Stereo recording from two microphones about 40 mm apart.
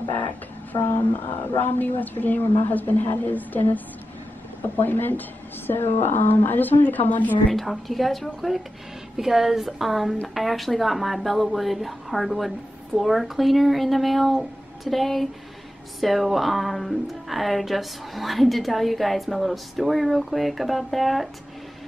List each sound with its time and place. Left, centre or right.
0.8 s speech: left
5.7 s speech: left
7.5 s speech: centre